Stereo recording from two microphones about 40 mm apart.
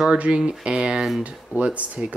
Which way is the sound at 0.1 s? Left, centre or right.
Right.